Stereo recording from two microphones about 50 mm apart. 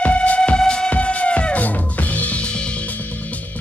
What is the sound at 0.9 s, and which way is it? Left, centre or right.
Music, left.